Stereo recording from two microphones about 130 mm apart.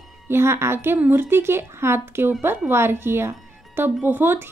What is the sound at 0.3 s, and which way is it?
Speech, 20° right (ahead or behind).